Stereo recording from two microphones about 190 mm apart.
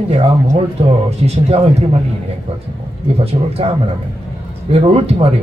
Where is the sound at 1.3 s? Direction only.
30° right (ahead or behind).